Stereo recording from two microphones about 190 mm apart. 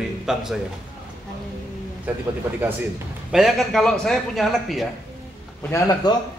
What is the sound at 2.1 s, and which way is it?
Speech, 10° right (ahead or behind).